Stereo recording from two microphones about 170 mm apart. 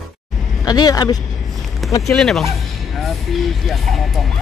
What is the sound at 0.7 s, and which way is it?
Speech, 25° left (ahead or behind).